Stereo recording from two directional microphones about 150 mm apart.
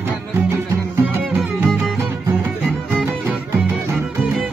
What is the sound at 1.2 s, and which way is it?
Music, 5° right (ahead or behind).